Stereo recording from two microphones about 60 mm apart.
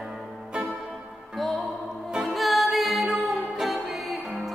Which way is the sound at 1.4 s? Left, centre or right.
Centre.